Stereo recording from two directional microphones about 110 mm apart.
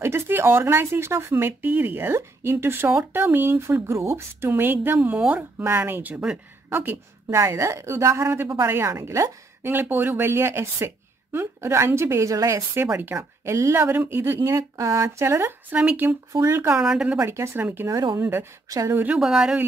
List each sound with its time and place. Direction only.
0.0 s a woman's voice: 20° right (ahead or behind)
16.3 s a woman's voice: 30° right (ahead or behind)
16.7 s speech: 5° right (ahead or behind)
17.2 s a woman's voice: 25° right (ahead or behind)
19.1 s speech: 5° right (ahead or behind)